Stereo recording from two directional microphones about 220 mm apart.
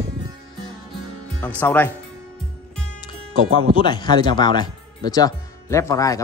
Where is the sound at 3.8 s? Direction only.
20° left (ahead or behind).